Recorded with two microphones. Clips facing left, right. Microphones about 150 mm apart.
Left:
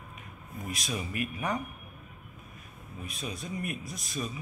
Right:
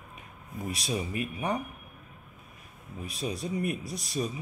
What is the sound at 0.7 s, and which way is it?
Speech, 30° right (ahead or behind).